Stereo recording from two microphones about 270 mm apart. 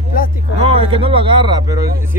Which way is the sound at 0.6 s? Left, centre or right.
Right.